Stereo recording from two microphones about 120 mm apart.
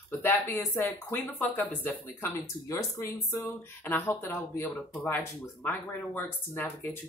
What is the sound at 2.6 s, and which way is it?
Speech, 25° left (ahead or behind).